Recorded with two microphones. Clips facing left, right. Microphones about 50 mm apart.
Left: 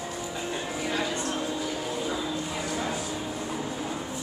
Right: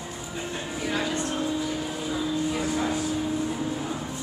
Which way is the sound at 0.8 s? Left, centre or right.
Centre.